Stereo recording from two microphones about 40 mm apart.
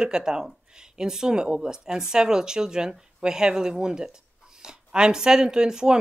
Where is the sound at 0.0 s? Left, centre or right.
Centre.